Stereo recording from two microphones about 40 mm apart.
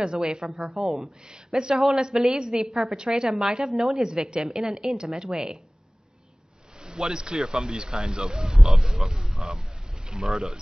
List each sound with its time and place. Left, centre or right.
0.0 s speech: centre
2.6 s speech: centre
3.0 s speech: centre
6.8 s speech: centre
8.5 s speech: centre